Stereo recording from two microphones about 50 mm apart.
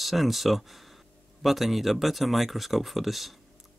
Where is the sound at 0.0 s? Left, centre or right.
Centre.